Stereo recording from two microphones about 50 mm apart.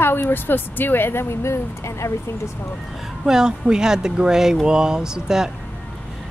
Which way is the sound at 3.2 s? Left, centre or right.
Centre.